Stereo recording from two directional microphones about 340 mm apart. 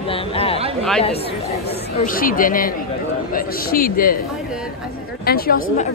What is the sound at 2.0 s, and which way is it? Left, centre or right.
Speech, left.